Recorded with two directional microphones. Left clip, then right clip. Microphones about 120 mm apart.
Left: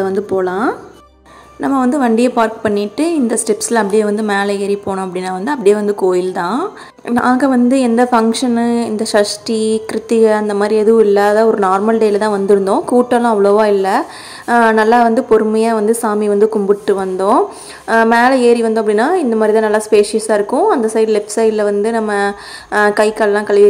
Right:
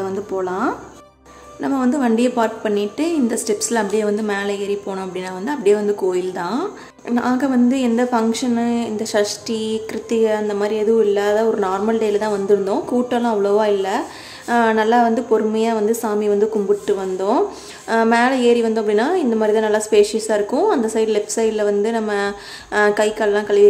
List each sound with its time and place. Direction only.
0.0 s speech: 40° left (ahead or behind)
1.6 s a woman's voice: 30° left (ahead or behind)